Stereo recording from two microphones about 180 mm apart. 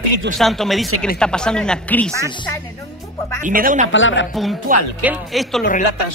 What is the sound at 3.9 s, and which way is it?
Speech, 90° left.